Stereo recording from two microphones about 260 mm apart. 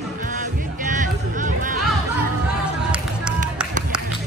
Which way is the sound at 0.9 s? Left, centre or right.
Right.